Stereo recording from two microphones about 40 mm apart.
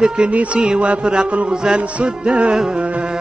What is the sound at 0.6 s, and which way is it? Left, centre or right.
Music, right.